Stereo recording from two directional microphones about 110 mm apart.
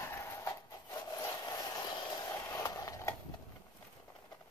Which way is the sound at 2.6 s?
30° left (ahead or behind).